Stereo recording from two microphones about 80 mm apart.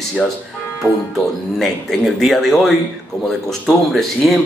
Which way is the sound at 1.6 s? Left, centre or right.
Centre.